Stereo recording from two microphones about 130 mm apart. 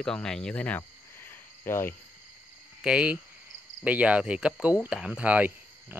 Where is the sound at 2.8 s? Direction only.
5° right (ahead or behind).